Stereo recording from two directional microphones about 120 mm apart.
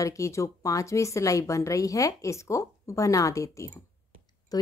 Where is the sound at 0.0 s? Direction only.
25° left (ahead or behind).